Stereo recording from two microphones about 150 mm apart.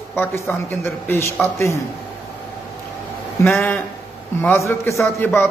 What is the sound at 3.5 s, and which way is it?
A man's voice, 10° left (ahead or behind).